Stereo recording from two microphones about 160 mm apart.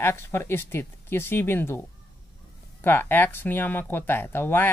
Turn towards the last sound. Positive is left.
turn(degrees=15)  # may be behind; listen again after turning